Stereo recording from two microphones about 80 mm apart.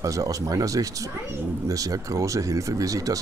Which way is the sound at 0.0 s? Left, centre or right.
Right.